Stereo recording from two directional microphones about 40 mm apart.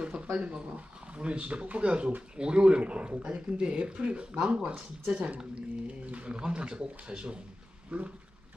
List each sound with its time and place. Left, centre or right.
0.0 s a sound: right
0.4 s speech: right
7.9 s dog: right